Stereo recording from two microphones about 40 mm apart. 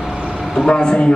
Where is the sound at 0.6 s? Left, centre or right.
Left.